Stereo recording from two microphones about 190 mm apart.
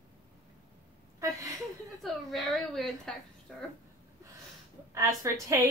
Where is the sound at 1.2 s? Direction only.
15° right (ahead or behind).